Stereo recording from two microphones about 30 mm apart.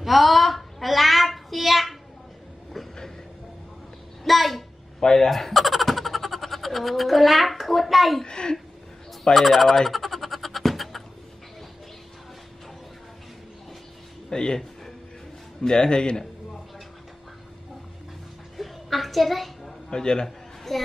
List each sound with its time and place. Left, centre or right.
0.0 s child singing: centre
4.3 s a sound: centre
5.0 s speech: left
5.3 s a sound: centre
8.2 s speech: left
9.3 s speech: centre
9.8 s goat: centre
14.3 s a man's voice: left
15.6 s speech: left
18.6 s a sound: centre
19.9 s speech: left
20.2 s a sound: centre